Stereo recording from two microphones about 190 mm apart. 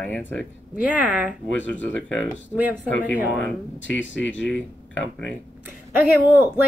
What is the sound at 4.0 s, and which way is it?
Speech, 75° left (ahead or behind).